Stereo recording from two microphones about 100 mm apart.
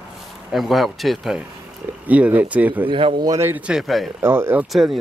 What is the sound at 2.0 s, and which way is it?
Speech, 15° right (ahead or behind).